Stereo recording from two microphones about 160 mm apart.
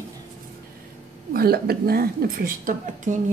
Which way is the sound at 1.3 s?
75° right (ahead or behind).